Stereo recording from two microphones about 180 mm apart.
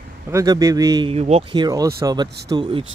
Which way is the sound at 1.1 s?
35° right (ahead or behind).